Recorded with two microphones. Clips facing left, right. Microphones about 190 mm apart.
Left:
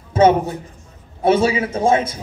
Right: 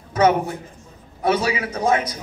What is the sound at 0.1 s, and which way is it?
A man's voice, 25° left (ahead or behind).